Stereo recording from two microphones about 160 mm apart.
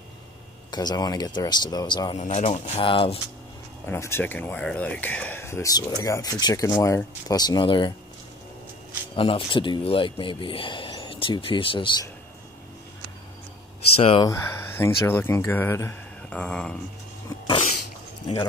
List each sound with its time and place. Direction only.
0.7 s speech: 25° left (ahead or behind)
2.1 s speech: 45° left (ahead or behind)
3.8 s speech: 15° left (ahead or behind); by 7.9 s 30° left (ahead or behind)
9.1 s speech: 35° left (ahead or behind)
13.9 s speech: 40° left (ahead or behind)
14.2 s speech: 15° left (ahead or behind)
16.3 s a sound: 5° left (ahead or behind)
17.5 s sneeze: 40° left (ahead or behind)